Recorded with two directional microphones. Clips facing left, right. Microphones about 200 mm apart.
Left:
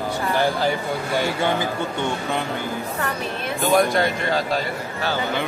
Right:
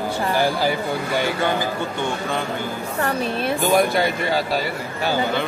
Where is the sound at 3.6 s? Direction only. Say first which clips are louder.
Left 1 dB; centre (ahead or behind).